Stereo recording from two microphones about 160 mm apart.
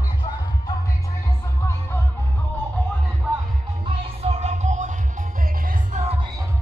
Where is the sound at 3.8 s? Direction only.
40° right (ahead or behind).